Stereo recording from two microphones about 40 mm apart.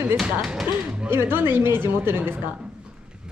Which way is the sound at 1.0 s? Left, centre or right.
Right.